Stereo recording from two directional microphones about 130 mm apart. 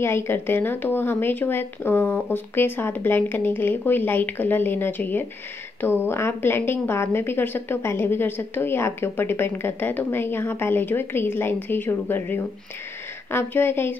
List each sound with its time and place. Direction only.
0.0 s a woman's voice: 20° left (ahead or behind)